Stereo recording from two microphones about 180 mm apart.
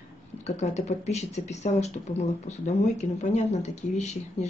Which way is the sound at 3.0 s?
40° left (ahead or behind).